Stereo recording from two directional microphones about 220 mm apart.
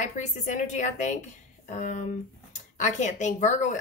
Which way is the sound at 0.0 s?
35° left (ahead or behind).